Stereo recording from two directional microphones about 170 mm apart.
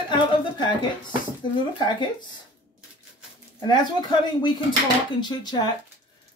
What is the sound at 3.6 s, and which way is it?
Speech, 25° left (ahead or behind).